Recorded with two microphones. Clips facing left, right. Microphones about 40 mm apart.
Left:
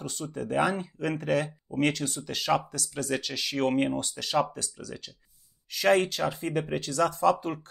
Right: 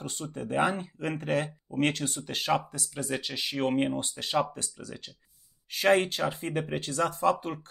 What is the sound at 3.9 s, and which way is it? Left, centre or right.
Speech, right.